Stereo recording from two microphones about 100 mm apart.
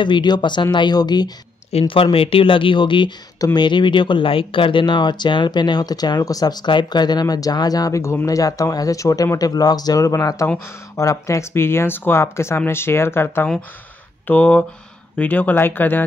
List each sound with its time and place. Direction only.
0.0 s speech: 50° left (ahead or behind)
1.7 s speech: 80° left; by 16.0 s 20° left (ahead or behind)